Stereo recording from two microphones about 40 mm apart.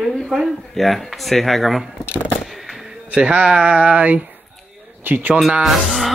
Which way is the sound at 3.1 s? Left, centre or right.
Right.